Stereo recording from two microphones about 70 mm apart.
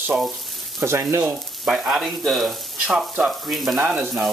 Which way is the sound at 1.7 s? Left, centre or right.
Centre.